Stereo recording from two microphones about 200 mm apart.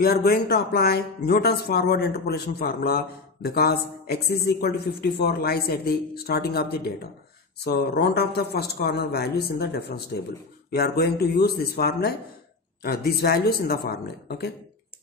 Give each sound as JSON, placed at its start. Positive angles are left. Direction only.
{"t": 0.0, "sound": "speech", "side_deg": 50}